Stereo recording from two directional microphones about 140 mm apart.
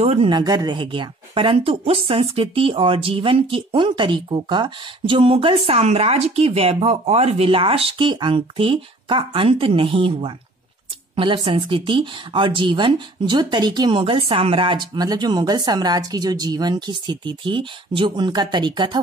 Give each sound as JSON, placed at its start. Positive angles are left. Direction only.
{"t": 0.0, "sound": "speech", "side_deg": -45}
{"t": 0.3, "sound": "speech", "side_deg": -30}